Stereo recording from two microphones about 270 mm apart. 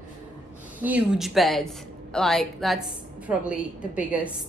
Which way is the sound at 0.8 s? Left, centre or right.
Centre.